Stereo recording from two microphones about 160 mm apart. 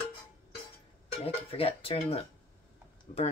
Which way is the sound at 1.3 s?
35° left (ahead or behind).